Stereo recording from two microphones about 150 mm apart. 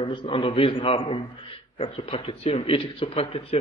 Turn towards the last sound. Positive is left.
turn(degrees=40)  # may be behind; listen again after turning